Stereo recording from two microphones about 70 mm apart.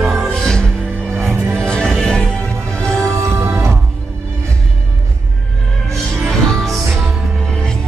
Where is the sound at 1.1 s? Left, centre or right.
Right.